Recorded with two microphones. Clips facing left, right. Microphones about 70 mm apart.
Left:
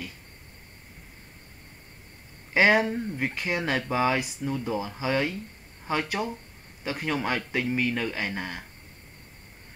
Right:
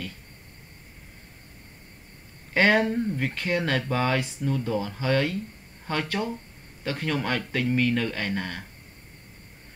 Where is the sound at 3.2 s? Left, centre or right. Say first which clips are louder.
Right 2 dB; centre.